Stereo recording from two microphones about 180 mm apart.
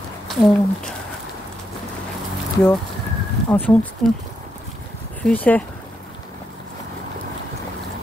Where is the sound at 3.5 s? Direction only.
10° left (ahead or behind).